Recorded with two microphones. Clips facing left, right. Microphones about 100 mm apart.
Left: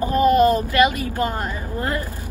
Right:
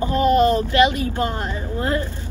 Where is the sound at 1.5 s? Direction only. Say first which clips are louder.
Right 2 dB; 25° right (ahead or behind).